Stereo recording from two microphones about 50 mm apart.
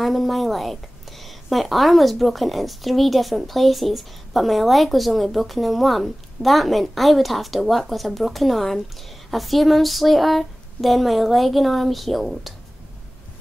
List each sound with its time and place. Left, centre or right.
0.0 s a woman's voice: centre